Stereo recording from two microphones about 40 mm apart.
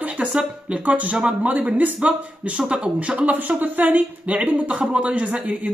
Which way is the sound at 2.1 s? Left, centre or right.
Right.